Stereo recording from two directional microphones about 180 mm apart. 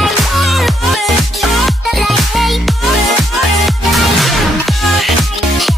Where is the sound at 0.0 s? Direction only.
Centre (ahead or behind).